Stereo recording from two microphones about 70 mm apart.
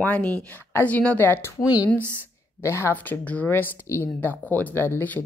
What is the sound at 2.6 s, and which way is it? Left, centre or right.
Speech, left.